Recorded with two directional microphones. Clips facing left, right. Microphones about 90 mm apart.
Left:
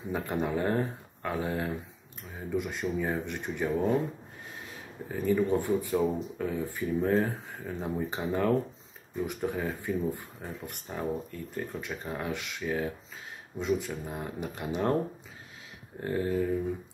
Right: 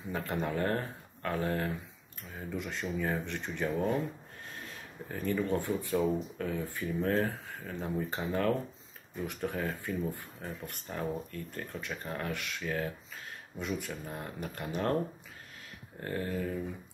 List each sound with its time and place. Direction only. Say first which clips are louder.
0.1 s speech: left 3 dB; 15° left (ahead or behind)
5.0 s speech: left 5 dB; 15° left (ahead or behind)
16.0 s speech: left 6 dB; 15° left (ahead or behind)